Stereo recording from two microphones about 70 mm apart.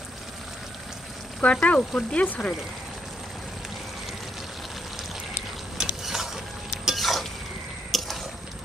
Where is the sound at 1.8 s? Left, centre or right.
Centre.